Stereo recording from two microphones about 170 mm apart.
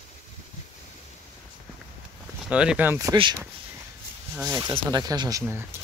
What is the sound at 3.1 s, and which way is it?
Speech, 30° right (ahead or behind).